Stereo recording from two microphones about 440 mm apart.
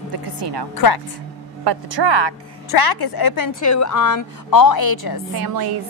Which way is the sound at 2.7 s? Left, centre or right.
Left.